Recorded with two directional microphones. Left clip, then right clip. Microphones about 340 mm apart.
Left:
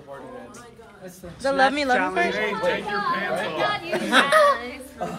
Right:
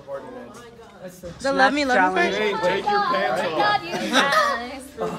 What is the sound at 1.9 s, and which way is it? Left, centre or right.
Female singing, right.